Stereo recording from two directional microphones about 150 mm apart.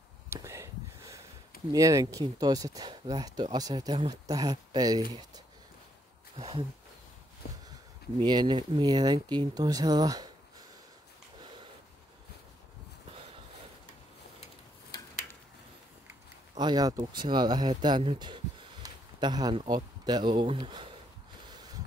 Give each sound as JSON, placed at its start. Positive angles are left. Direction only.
{"t": 0.3, "sound": "a sound", "side_deg": -20}
{"t": 1.7, "sound": "speech", "side_deg": -20}
{"t": 6.3, "sound": "speech", "side_deg": -45}
{"t": 8.2, "sound": "speech", "side_deg": -30}
{"t": 16.5, "sound": "speech", "side_deg": -25}